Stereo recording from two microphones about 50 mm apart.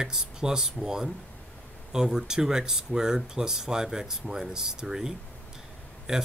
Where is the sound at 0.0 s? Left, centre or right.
Centre.